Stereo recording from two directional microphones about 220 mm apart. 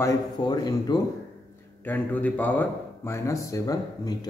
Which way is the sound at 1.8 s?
5° left (ahead or behind).